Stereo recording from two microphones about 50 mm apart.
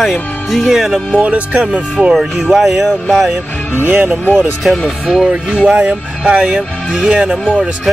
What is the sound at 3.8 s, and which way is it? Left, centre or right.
Speech, right.